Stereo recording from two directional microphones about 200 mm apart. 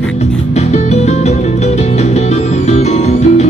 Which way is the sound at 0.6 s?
35° left (ahead or behind).